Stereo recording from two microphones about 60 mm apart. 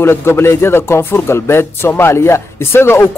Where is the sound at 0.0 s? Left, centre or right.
Left.